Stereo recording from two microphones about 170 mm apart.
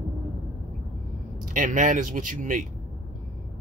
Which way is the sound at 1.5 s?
50° right (ahead or behind).